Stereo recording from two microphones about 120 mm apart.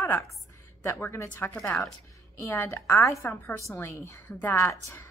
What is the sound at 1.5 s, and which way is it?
Speech, 5° left (ahead or behind).